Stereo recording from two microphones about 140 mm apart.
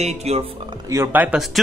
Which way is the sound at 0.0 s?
50° right (ahead or behind).